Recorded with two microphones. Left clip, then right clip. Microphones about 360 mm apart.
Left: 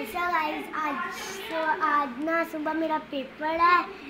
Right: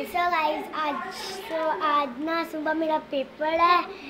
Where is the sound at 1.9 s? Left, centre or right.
Centre.